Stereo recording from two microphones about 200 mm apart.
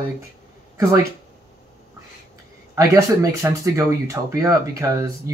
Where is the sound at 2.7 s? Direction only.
15° right (ahead or behind).